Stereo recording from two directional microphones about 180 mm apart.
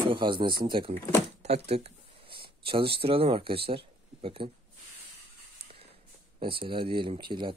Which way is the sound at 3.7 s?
30° right (ahead or behind).